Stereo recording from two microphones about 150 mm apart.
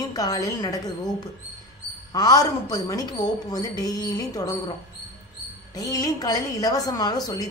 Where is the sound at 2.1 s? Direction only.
25° left (ahead or behind).